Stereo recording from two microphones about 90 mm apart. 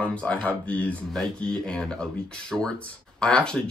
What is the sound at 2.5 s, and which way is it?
Speech, 5° right (ahead or behind).